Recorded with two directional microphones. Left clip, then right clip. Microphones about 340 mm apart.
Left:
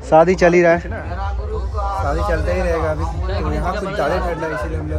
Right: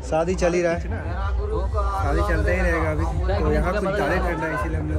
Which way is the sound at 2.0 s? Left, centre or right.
Centre.